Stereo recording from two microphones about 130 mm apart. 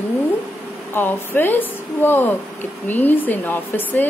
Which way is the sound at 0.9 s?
15° left (ahead or behind).